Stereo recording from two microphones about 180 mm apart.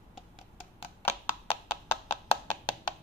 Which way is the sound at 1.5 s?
30° left (ahead or behind).